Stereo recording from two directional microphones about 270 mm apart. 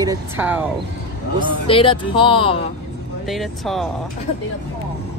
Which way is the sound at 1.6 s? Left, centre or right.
Centre.